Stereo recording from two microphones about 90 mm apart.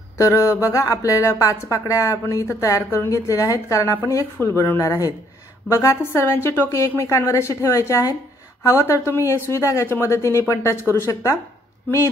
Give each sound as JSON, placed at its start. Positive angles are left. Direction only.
{"t": 0.2, "sound": "speech", "side_deg": 35}